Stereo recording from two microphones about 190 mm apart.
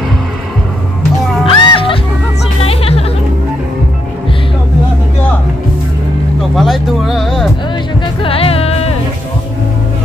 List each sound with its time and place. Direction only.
1.4 s music: 25° left (ahead or behind)
6.5 s music: centre (ahead or behind)
8.2 s music: 30° left (ahead or behind)